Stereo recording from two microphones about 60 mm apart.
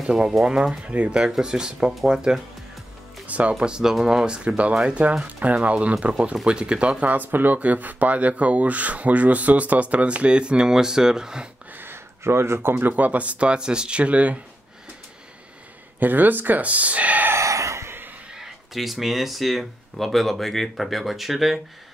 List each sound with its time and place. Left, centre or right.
0.0 s speech: centre
0.6 s speech: centre
1.2 s speech: centre
3.3 s music: right
3.5 s speech: centre
4.5 s speech: right
7.1 s speech: right; by 11.4 s centre
11.7 s speech: right
16.0 s speech: right
17.3 s a sound: right
18.3 s speech: centre